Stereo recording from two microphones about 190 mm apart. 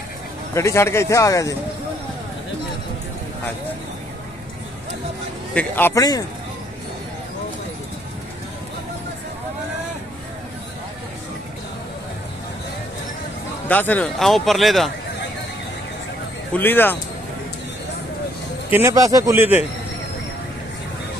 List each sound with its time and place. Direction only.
0.6 s speech: 15° left (ahead or behind)
5.5 s speech: 10° left (ahead or behind)
13.7 s speech: 10° left (ahead or behind)
16.5 s speech: 10° left (ahead or behind)
18.7 s speech: 15° right (ahead or behind)